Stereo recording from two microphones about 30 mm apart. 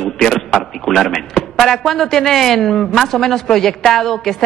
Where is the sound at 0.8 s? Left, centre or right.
Centre.